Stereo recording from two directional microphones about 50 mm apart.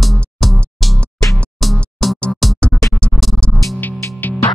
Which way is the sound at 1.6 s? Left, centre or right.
Centre.